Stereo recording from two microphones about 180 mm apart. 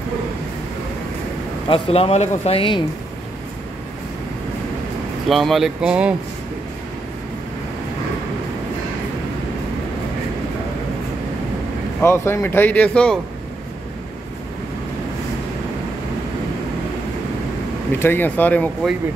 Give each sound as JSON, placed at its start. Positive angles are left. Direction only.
{"t": 1.7, "sound": "speech", "side_deg": 35}
{"t": 5.3, "sound": "speech", "side_deg": 0}
{"t": 12.0, "sound": "speech", "side_deg": 15}
{"t": 17.9, "sound": "speech", "side_deg": 10}